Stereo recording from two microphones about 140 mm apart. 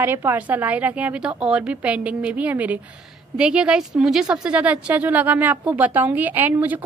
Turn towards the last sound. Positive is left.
turn(degrees=-10)  # may be behind; listen again after turning